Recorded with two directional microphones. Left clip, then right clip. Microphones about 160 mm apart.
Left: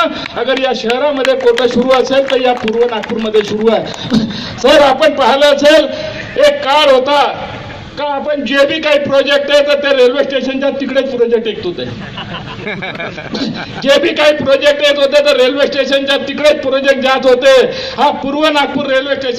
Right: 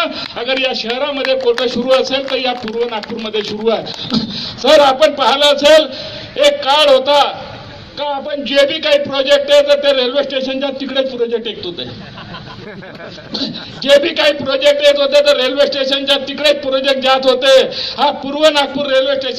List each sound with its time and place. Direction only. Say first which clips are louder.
0.0 s a man's voice: left 4 dB; 20° right (ahead or behind)
13.3 s a man's voice: left 2 dB; 20° right (ahead or behind)